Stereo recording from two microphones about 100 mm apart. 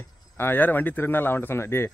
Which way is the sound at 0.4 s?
20° left (ahead or behind).